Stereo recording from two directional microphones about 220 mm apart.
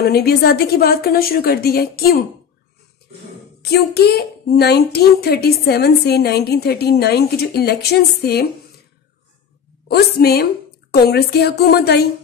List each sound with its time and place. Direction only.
0.0 s speech: 45° left (ahead or behind)
3.6 s speech: 50° left (ahead or behind)
9.8 s speech: 45° left (ahead or behind)